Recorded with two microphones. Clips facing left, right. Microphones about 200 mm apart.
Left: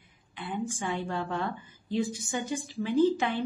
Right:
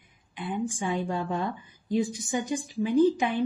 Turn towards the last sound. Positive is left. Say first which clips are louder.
# right 2 dB
turn(degrees=-15)  # may be behind; listen again after turning